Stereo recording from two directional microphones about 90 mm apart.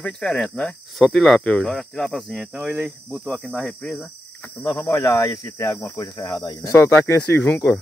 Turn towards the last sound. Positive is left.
turn(degrees=25)  # may be behind; listen again after turning